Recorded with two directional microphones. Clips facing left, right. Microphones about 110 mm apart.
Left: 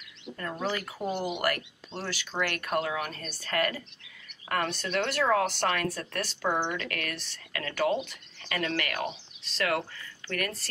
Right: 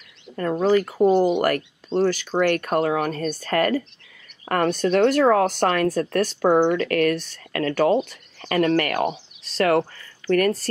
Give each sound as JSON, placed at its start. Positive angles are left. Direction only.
{"t": 0.4, "sound": "speech", "side_deg": -45}